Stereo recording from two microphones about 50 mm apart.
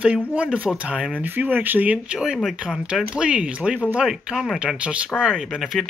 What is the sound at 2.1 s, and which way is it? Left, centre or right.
Speech, centre.